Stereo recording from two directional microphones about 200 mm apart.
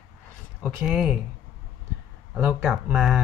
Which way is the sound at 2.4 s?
5° right (ahead or behind).